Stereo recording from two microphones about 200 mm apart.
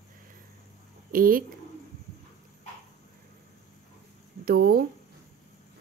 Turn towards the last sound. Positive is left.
turn(degrees=-45)  # may be behind; listen again after turning